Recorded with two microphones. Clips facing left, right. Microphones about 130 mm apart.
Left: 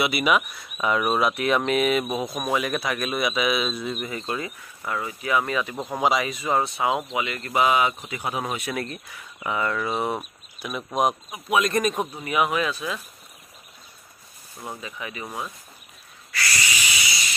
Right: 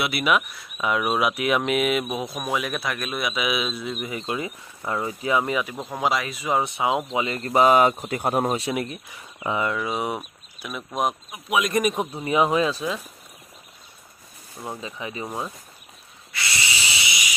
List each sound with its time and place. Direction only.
0.0 s speech: centre (ahead or behind); by 5.7 s 15° right (ahead or behind)
5.9 s speech: centre (ahead or behind); by 7.1 s 20° right (ahead or behind)
7.1 s speech: 30° right (ahead or behind)
8.7 s speech: 10° right (ahead or behind)
9.4 s speech: 20° right (ahead or behind)
9.8 s speech: 5° right (ahead or behind)
12.3 s speech: 30° right (ahead or behind)
14.8 s speech: 25° right (ahead or behind)
16.3 s owl: 25° right (ahead or behind)